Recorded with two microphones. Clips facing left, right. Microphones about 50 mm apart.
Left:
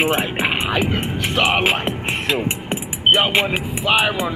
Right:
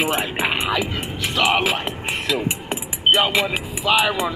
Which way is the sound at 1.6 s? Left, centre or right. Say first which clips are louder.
Left 3 dB; left.